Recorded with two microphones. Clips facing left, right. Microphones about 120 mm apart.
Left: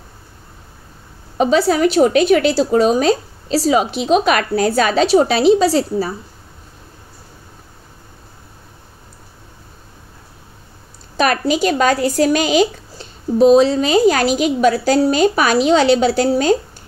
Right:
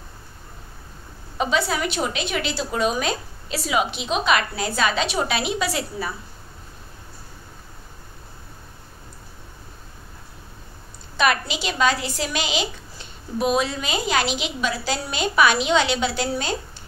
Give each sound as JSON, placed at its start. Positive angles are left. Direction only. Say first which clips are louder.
{"t": 1.4, "sound": "a woman's voice", "louder": "left 9 dB", "side_deg": 40}
{"t": 11.1, "sound": "a woman's voice", "louder": "left 6 dB", "side_deg": 40}